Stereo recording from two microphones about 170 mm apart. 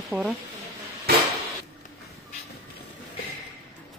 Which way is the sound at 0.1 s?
15° right (ahead or behind).